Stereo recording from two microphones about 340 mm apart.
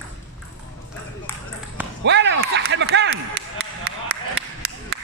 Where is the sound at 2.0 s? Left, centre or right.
Right.